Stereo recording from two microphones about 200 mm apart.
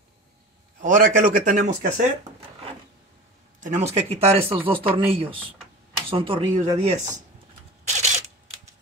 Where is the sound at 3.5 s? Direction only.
35° right (ahead or behind).